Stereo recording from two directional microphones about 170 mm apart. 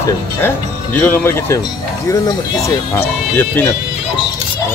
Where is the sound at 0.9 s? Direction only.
10° left (ahead or behind).